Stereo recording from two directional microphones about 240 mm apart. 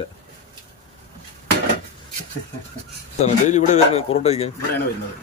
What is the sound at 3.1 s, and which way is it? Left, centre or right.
A man's voice, left.